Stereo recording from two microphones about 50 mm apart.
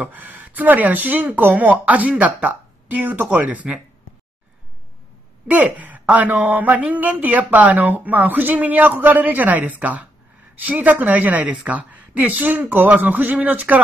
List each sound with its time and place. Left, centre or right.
0.0 s speech: right
5.5 s speech: right